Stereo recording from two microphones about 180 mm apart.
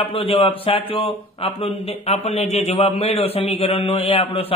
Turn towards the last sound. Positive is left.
turn(degrees=30)  # may be behind; listen again after turning